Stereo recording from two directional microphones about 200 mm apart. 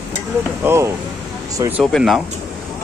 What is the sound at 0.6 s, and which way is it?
Speech, 15° right (ahead or behind).